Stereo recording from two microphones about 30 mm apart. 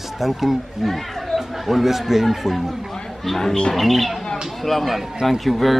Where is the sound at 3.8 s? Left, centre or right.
Centre.